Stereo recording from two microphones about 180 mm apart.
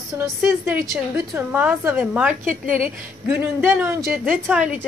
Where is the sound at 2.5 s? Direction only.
50° right (ahead or behind).